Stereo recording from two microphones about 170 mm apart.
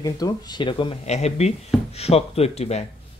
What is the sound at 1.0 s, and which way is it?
Speech, 40° left (ahead or behind).